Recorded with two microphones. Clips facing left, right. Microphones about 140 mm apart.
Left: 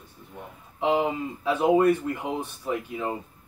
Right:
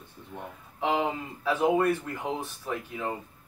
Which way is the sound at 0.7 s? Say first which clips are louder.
Left 4 dB; 20° left (ahead or behind).